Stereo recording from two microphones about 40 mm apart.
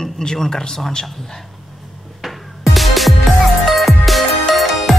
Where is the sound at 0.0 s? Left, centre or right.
Centre.